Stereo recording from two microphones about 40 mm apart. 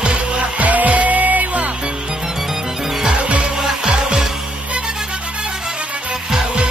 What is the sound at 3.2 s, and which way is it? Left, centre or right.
Music, right.